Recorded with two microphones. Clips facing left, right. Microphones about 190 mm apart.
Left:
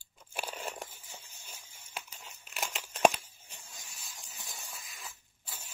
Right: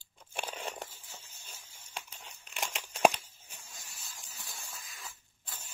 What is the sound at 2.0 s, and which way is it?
Tearing, 5° left (ahead or behind).